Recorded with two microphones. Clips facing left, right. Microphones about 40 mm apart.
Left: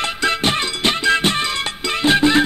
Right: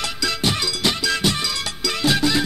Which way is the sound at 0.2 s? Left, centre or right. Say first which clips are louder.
Left 4 dB; left.